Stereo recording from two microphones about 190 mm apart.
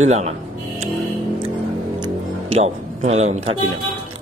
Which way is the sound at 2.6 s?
35° right (ahead or behind).